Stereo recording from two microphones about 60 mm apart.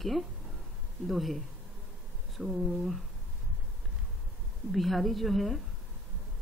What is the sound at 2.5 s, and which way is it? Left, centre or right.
Speech, centre.